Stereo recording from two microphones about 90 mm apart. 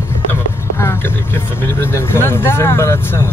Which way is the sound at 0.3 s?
25° left (ahead or behind).